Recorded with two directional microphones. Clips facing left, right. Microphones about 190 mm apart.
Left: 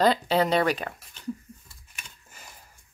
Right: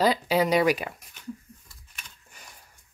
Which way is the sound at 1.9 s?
5° left (ahead or behind).